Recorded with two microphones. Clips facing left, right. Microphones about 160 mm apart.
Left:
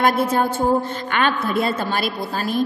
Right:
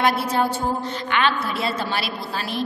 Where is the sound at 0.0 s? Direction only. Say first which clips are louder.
Left 3 dB; 50° left (ahead or behind).